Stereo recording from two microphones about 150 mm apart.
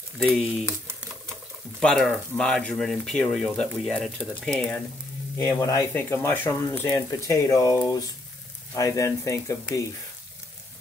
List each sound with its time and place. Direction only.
0.3 s speech: centre (ahead or behind)
1.8 s speech: 5° left (ahead or behind)
5.4 s speech: 20° left (ahead or behind)